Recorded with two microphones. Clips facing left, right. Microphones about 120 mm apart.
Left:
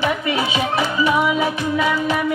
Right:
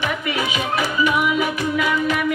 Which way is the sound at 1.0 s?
30° left (ahead or behind).